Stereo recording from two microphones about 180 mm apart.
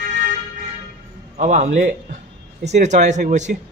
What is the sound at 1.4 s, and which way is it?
A man's voice, 40° right (ahead or behind).